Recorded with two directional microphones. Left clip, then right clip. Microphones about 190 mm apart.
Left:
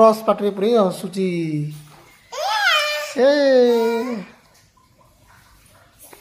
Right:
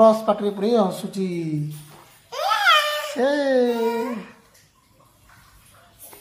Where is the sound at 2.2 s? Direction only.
Centre (ahead or behind).